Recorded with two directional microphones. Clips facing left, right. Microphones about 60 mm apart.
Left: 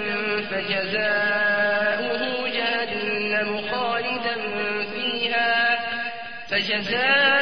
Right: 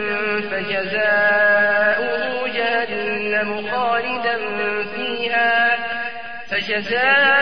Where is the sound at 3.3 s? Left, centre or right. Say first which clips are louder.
Right 4 dB; centre.